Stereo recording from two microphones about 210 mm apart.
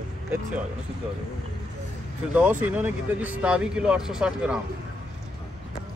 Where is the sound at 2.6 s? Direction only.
5° right (ahead or behind).